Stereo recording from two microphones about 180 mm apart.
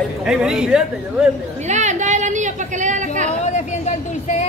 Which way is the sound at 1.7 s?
40° right (ahead or behind).